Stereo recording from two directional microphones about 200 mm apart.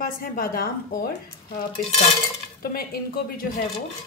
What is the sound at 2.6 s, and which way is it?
Speech, 50° left (ahead or behind).